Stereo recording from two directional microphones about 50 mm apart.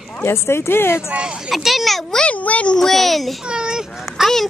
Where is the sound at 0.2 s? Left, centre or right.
Left.